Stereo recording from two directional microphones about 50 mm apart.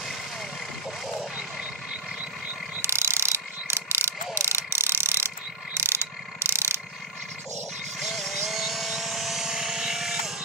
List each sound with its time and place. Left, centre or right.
2.8 s ratchet: right
4.4 s mechanisms: right
5.8 s ratchet: right
8.0 s vehicle: centre